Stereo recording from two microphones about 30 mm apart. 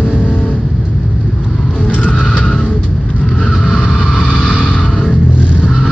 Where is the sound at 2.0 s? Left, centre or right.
Left.